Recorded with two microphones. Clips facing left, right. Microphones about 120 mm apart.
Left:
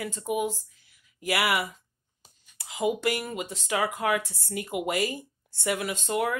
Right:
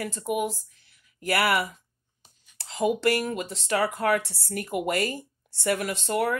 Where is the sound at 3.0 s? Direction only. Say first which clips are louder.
Right 4 dB; 65° right (ahead or behind).